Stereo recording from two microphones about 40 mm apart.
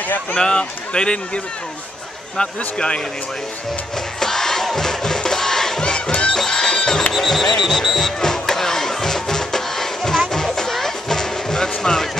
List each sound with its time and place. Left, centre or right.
0.4 s a man's voice: left
4.2 s crowd: centre
7.2 s music: centre
7.6 s speech: centre
8.0 s music: centre
11.7 s speech: centre